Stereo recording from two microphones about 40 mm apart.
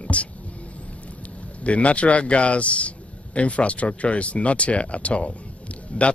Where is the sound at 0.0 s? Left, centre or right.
Left.